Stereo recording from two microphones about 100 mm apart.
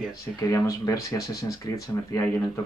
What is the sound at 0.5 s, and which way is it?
Speech, 35° left (ahead or behind).